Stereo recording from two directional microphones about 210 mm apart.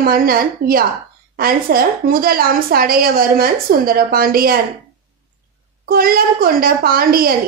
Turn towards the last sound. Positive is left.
turn(degrees=-45)  # may be behind; listen again after turning